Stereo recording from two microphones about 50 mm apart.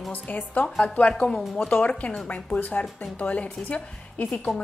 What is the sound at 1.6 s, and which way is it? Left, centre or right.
A woman's voice, left.